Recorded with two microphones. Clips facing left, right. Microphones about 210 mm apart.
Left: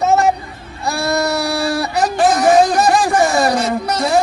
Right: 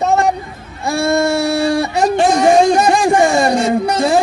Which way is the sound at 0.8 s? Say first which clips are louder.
Right 4 dB; 25° right (ahead or behind).